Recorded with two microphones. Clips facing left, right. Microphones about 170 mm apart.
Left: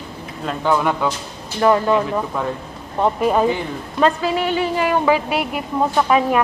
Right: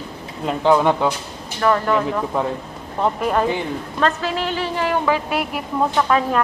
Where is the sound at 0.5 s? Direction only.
15° right (ahead or behind).